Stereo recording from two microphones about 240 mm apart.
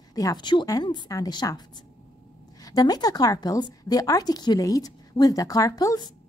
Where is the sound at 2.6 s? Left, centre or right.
Centre.